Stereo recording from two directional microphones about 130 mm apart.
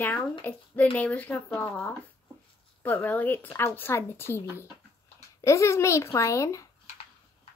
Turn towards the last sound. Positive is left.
turn(degrees=25)  # may be behind; listen again after turning